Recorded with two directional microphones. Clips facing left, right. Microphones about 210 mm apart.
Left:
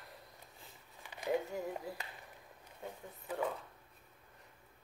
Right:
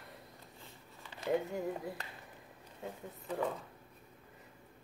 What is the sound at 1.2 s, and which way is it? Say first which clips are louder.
Speech: right 2 dB; centre (ahead or behind).